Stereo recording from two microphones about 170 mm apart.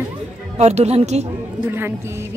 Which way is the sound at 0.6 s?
40° right (ahead or behind).